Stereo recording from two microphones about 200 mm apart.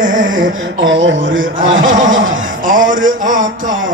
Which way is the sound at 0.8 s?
70° right (ahead or behind).